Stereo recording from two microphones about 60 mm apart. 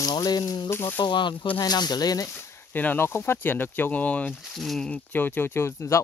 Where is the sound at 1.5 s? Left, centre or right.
Left.